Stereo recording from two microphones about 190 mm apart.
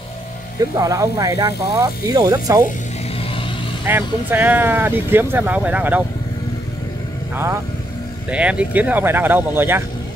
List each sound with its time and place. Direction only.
0.7 s speech: 20° right (ahead or behind)
3.8 s speech: 10° right (ahead or behind)
8.3 s speech: 5° right (ahead or behind)